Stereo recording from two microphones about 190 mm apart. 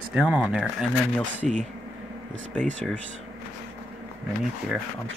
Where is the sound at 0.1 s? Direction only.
5° right (ahead or behind).